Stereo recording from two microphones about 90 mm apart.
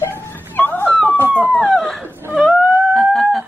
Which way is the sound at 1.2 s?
15° right (ahead or behind).